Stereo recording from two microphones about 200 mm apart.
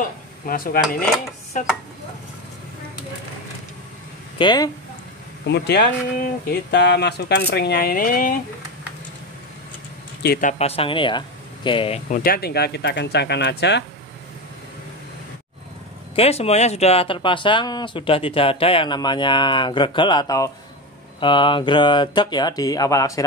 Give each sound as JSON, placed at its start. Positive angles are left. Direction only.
{"t": 0.5, "sound": "speech", "side_deg": 45}
{"t": 1.5, "sound": "stir", "side_deg": 40}
{"t": 4.4, "sound": "speech", "side_deg": 20}
{"t": 5.5, "sound": "speech", "side_deg": 55}
{"t": 10.2, "sound": "speech", "side_deg": 50}
{"t": 10.6, "sound": "speech", "side_deg": 30}
{"t": 12.1, "sound": "speech", "side_deg": 45}
{"t": 16.2, "sound": "speech", "side_deg": 30}